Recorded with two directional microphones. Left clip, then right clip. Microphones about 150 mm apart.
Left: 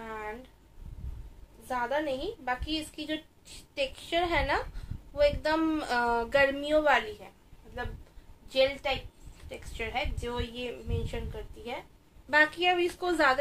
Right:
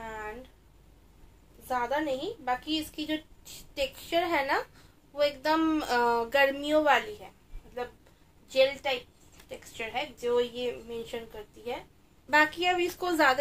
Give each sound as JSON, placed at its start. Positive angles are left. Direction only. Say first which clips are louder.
{"t": 0.0, "sound": "a sound", "louder": "even", "side_deg": -5}
{"t": 1.7, "sound": "a woman's voice", "louder": "right 1 dB", "side_deg": -15}
{"t": 8.5, "sound": "a woman's voice", "louder": "right 1 dB", "side_deg": -5}
{"t": 12.3, "sound": "a woman's voice", "louder": "even", "side_deg": -20}